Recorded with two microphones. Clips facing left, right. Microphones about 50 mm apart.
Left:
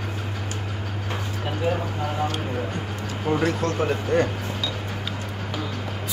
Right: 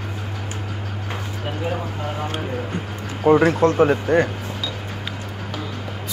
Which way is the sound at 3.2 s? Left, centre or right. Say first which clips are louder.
Right 9 dB; right.